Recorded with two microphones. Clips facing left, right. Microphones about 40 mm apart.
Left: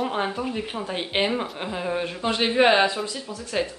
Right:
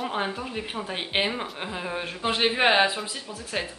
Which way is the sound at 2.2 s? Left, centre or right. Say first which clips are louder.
Left 2 dB; centre.